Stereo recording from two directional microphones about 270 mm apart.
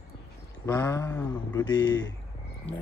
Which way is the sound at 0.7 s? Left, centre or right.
Centre.